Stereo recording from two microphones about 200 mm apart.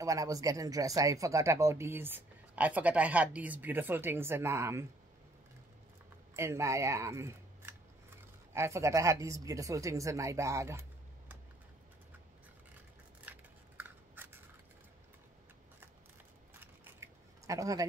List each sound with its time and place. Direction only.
0.0 s speech: 15° right (ahead or behind)
6.3 s speech: 15° right (ahead or behind)
13.3 s scissors: 10° right (ahead or behind)
16.5 s scissors: 10° right (ahead or behind)